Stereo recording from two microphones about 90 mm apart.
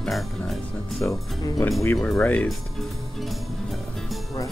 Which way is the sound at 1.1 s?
35° left (ahead or behind).